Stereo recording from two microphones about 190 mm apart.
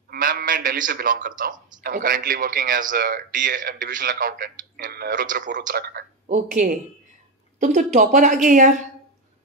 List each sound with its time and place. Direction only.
0.1 s a man's voice: 50° right (ahead or behind)